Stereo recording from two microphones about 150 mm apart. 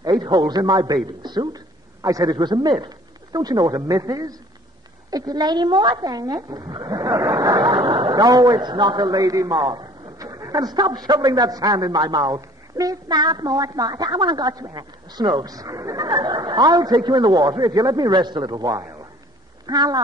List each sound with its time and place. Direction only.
0.2 s a woman's voice: 30° right (ahead or behind)
1.2 s a sound: 30° right (ahead or behind)
2.3 s a woman's voice: 30° right (ahead or behind)
6.9 s speech: 10° right (ahead or behind)
8.2 s a woman's voice: 25° right (ahead or behind)
9.7 s a sound: 30° right (ahead or behind)
10.5 s a woman's voice: 30° right (ahead or behind)
16.0 s speech: 45° right (ahead or behind)
16.3 s a woman's voice: 30° right (ahead or behind)
18.7 s a man's voice: 5° right (ahead or behind)
19.6 s speech: 25° right (ahead or behind)